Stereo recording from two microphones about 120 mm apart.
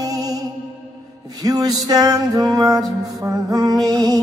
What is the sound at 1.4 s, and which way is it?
Music, 30° right (ahead or behind).